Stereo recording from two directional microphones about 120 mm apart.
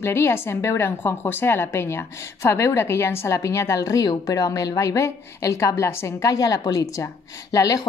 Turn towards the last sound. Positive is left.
turn(degrees=30)  # may be behind; listen again after turning